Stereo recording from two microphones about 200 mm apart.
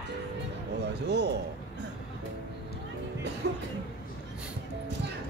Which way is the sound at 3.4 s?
55° right (ahead or behind).